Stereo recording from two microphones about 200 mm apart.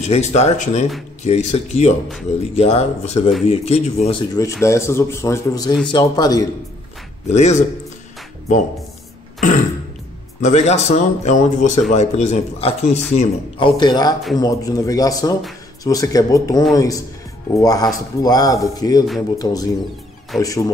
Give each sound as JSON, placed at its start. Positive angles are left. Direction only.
{"t": 0.0, "sound": "speech", "side_deg": 35}
{"t": 4.3, "sound": "speech", "side_deg": 15}
{"t": 7.2, "sound": "speech", "side_deg": 35}
{"t": 10.4, "sound": "speech", "side_deg": 35}